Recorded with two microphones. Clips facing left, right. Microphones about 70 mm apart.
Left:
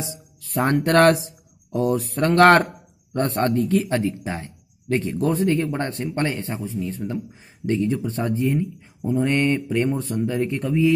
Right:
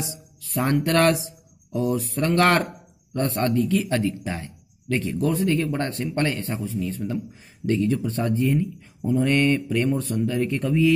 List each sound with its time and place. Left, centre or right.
0.1 s speech: left; by 7.2 s centre
7.6 s speech: left